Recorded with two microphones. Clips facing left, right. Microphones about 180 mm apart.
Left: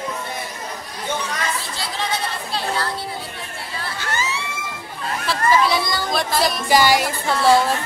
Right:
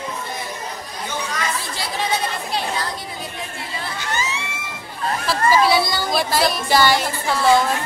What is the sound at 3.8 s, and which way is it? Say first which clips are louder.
Crowd: even; 15° right (ahead or behind).